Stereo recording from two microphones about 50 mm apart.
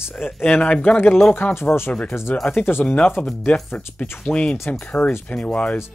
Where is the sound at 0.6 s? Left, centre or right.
Left.